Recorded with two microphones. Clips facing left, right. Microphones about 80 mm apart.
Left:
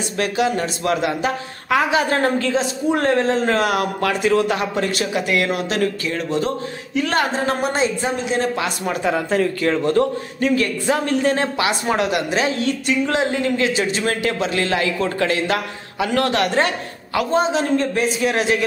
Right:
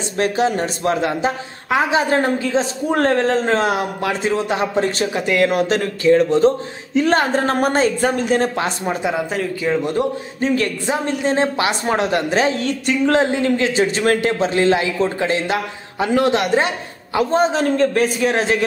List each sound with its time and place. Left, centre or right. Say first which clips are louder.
0.2 s a man's voice: right 2 dB; right; by 2.5 s centre
2.5 s a man's voice: right 1 dB; right
8.5 s a man's voice: right 2 dB; right
9.0 s a man's voice: left 5 dB; centre
10.4 s a man's voice: even; right
10.9 s a man's voice: left 2 dB; right
17.2 s a man's voice: right 2 dB; right